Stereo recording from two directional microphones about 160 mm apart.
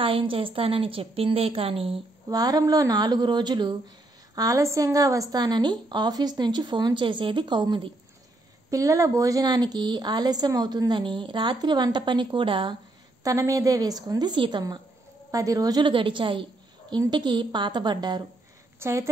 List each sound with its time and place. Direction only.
0.0 s a woman's voice: 35° right (ahead or behind)
2.2 s a woman's voice: 25° right (ahead or behind)
13.2 s a woman's voice: 20° right (ahead or behind)